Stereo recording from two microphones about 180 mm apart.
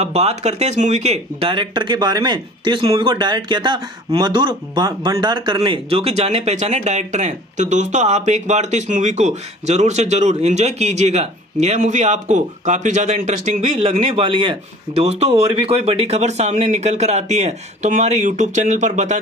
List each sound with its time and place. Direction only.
0.0 s speech: 35° right (ahead or behind)